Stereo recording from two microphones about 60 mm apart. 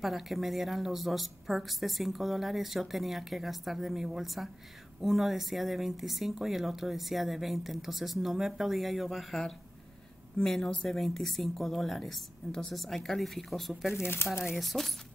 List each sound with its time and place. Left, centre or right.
0.0 s speech: centre
13.9 s speech: left
14.4 s speech: centre